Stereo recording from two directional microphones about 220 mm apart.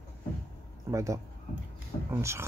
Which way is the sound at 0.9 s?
15° right (ahead or behind).